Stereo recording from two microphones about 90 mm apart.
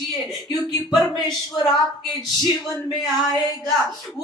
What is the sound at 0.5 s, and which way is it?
Speech, 50° left (ahead or behind).